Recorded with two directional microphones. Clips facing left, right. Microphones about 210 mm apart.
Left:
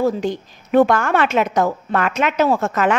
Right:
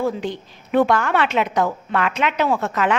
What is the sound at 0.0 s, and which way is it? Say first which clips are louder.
A woman's voice: left 4 dB; 45° left (ahead or behind).